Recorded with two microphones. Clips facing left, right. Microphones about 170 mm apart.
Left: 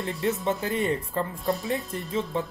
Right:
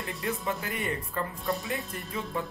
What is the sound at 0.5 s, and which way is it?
Speech, 25° left (ahead or behind).